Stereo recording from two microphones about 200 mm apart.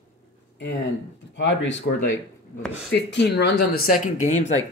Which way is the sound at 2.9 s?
60° left (ahead or behind).